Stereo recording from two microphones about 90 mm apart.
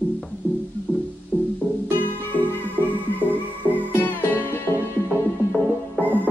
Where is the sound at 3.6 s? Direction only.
20° right (ahead or behind).